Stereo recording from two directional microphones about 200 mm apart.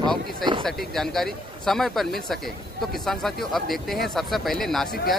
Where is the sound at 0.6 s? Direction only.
Centre (ahead or behind).